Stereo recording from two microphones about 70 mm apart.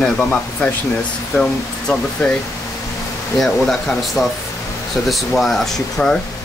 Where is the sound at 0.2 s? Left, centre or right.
Centre.